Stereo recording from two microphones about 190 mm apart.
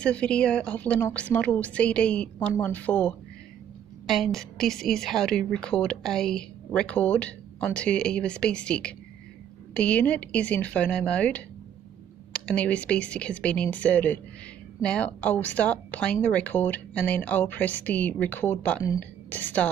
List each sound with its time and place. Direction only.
0.0 s a woman's voice: 5° left (ahead or behind)